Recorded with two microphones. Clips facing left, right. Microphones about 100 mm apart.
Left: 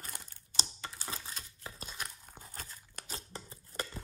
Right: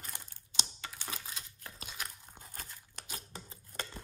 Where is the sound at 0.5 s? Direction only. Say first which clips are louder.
Left 1 dB; 40° left (ahead or behind).